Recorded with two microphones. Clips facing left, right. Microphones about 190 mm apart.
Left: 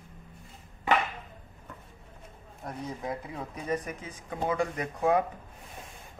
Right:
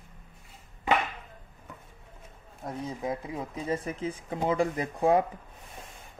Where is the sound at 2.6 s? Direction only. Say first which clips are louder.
Right 2 dB; 25° right (ahead or behind).